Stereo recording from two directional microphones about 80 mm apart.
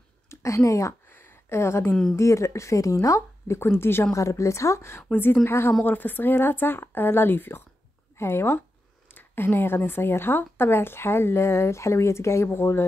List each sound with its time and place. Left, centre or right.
0.3 s a woman's voice: left
1.0 s a sound: left
2.1 s speech: left